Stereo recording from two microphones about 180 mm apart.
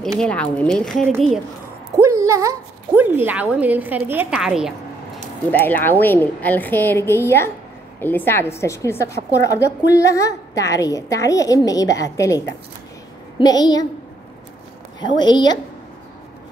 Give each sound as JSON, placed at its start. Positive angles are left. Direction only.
{"t": 0.2, "sound": "a woman's voice", "side_deg": 5}
{"t": 2.0, "sound": "a woman's voice", "side_deg": -15}
{"t": 5.5, "sound": "a woman's voice", "side_deg": 10}
{"t": 15.1, "sound": "a woman's voice", "side_deg": 25}